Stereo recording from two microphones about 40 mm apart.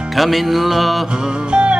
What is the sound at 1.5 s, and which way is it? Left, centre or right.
Music, right.